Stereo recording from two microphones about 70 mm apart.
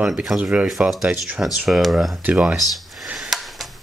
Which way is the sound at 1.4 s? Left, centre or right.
Centre.